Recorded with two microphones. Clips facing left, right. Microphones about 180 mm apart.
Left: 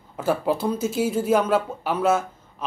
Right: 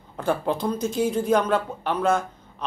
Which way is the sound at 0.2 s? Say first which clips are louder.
Left 2 dB; 5° left (ahead or behind).